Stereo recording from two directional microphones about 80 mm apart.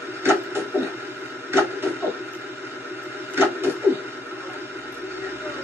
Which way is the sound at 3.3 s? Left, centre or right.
Right.